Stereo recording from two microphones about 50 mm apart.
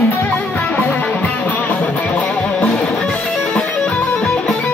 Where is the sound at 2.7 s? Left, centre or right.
Centre.